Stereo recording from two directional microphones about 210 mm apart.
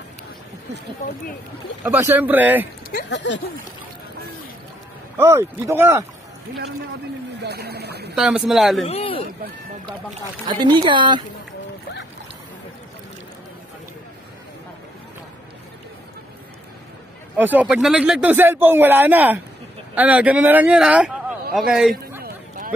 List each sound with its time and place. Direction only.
1.8 s speech: 10° right (ahead or behind)
2.9 s speech: 50° left (ahead or behind)
5.1 s speech: 15° right (ahead or behind)
7.4 s speech: 50° right (ahead or behind)
8.2 s speech: 5° right (ahead or behind)
8.8 s speech: 25° left (ahead or behind)
10.4 s speech: 20° right (ahead or behind)
17.4 s a man's voice: 10° right (ahead or behind)
22.2 s a sound: 40° right (ahead or behind)